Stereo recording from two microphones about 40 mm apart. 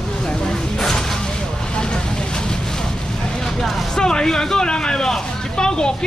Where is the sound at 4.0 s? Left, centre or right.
Centre.